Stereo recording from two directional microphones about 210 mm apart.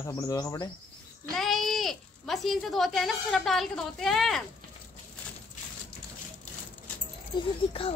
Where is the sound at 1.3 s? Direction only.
Centre (ahead or behind).